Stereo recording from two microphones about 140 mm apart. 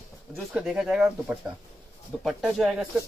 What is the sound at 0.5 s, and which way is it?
A man's voice, 5° right (ahead or behind).